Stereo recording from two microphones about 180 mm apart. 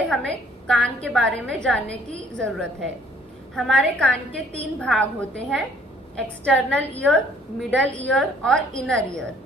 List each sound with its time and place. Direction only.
0.1 s a woman's voice: centre (ahead or behind)
7.8 s a woman's voice: 85° right
8.1 s a woman's voice: 5° left (ahead or behind)